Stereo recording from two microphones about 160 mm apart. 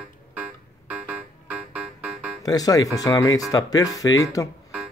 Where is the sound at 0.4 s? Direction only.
10° right (ahead or behind).